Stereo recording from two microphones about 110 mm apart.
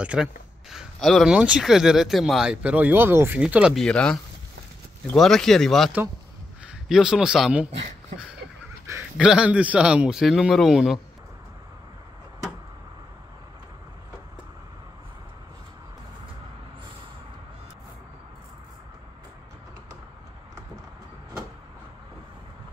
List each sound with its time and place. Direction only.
0.0 s speech: 10° right (ahead or behind)
3.3 s speech: 10° right (ahead or behind)
3.7 s speech: 10° left (ahead or behind)
8.9 s a sound: 30° right (ahead or behind)
9.2 s speech: 10° right (ahead or behind)